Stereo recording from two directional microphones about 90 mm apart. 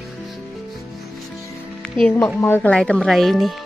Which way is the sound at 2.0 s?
20° left (ahead or behind).